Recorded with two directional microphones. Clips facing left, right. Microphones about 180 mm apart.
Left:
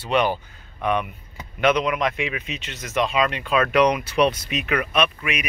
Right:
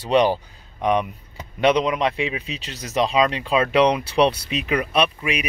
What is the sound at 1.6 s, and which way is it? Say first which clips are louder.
Speech: right 2 dB; 30° right (ahead or behind).